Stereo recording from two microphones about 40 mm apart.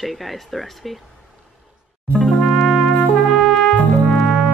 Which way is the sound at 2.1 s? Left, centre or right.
Centre.